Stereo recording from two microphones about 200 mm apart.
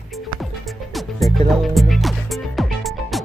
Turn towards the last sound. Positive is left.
turn(degrees=0)  # may be behind; listen again after turning